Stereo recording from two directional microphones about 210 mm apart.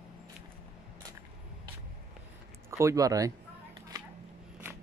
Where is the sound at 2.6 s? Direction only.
15° right (ahead or behind).